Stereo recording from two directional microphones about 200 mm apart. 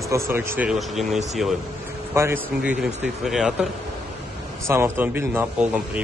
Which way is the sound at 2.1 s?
10° right (ahead or behind).